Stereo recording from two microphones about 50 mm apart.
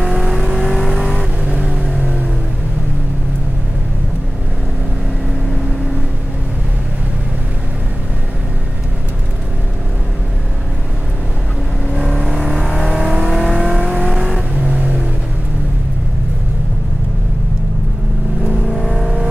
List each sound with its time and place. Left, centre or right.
0.4 s vehicle: centre
1.4 s vehicle: right
12.2 s vehicle: centre
14.5 s vehicle: right
18.5 s vehicle: centre